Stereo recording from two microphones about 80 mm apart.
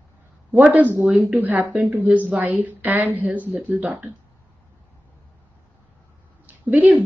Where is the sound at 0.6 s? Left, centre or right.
Right.